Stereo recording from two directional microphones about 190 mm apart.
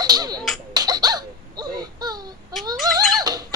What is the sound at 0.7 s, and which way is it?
Baby laughter, 20° right (ahead or behind).